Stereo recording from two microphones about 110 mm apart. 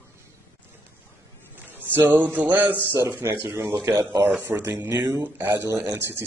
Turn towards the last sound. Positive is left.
turn(degrees=-25)  # may be behind; listen again after turning